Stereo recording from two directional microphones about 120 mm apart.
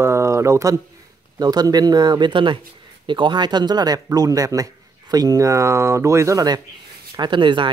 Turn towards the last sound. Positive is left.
turn(degrees=-40)  # may be behind; listen again after turning